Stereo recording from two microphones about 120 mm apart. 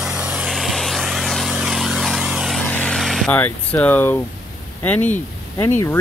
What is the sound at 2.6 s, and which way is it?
Vehicle, 10° left (ahead or behind).